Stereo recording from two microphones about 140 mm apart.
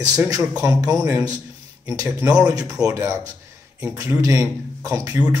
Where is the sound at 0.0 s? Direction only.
25° right (ahead or behind).